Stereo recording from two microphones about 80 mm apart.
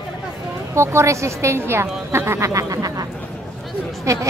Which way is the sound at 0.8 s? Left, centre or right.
Right.